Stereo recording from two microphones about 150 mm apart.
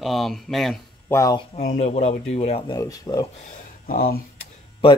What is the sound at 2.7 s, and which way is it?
Speech, 25° left (ahead or behind).